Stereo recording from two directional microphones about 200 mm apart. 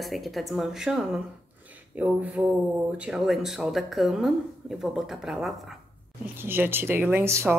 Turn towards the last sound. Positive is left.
turn(degrees=-15)  # may be behind; listen again after turning